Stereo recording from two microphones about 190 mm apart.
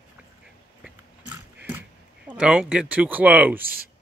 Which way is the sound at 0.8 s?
5° right (ahead or behind).